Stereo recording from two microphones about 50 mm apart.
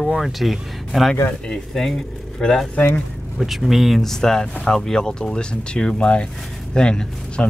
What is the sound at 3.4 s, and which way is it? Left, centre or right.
Speech, centre.